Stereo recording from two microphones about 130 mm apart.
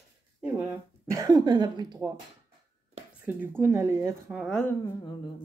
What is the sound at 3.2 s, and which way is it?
Speech, 15° right (ahead or behind).